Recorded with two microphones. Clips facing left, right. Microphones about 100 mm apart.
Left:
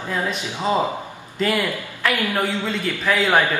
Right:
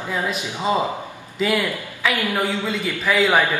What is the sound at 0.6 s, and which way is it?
Speech, 15° right (ahead or behind).